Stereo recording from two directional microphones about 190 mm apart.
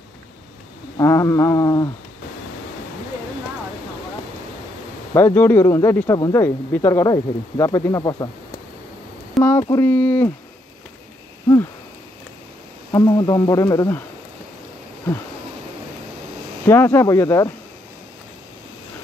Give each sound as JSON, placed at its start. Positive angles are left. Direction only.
{"t": 0.9, "sound": "speech", "side_deg": 15}
{"t": 5.1, "sound": "speech", "side_deg": 10}
{"t": 9.4, "sound": "speech", "side_deg": 15}
{"t": 12.9, "sound": "speech", "side_deg": 20}
{"t": 16.6, "sound": "speech", "side_deg": 15}